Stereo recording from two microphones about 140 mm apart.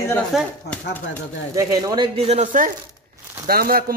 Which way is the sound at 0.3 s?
Centre (ahead or behind).